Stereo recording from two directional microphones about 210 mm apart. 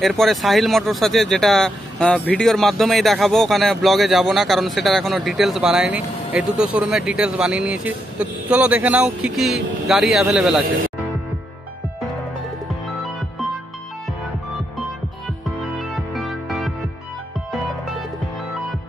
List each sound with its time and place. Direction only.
0.0 s speech: centre (ahead or behind)
15.8 s music: centre (ahead or behind)